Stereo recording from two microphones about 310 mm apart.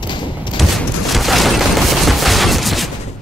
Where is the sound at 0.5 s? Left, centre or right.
Centre.